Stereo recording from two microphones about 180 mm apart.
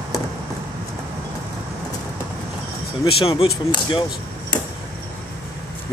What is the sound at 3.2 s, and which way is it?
Speech, 30° left (ahead or behind).